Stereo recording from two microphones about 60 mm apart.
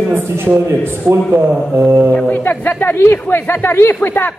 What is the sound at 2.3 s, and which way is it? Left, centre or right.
A man's voice, left.